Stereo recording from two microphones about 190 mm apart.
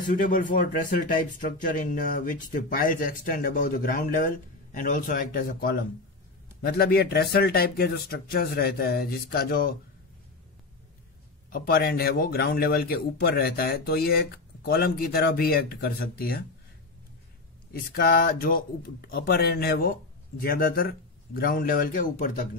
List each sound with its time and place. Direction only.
0.0 s speech: 45° left (ahead or behind)
11.5 s speech: 50° left (ahead or behind)
17.7 s speech: 50° left (ahead or behind)